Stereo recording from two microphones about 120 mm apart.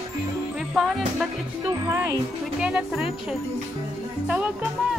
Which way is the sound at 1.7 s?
25° right (ahead or behind).